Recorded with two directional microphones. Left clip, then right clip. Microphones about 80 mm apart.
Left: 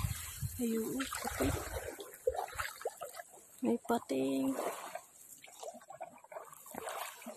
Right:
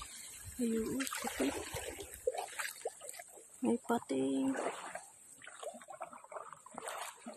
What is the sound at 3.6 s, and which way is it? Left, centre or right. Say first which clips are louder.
Speech: left 1 dB; centre.